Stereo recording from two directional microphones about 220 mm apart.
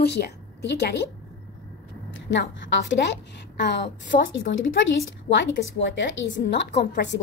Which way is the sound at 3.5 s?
50° left (ahead or behind).